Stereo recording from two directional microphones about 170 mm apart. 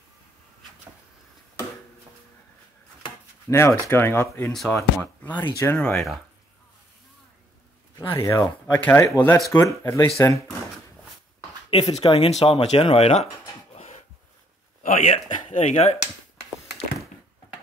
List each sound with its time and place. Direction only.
3.4 s speech: 15° left (ahead or behind)
4.5 s speech: 5° left (ahead or behind)
8.1 s speech: 15° left (ahead or behind)
12.0 s speech: 35° left (ahead or behind)
13.7 s a sound: 45° left (ahead or behind)
14.8 s speech: 45° left (ahead or behind)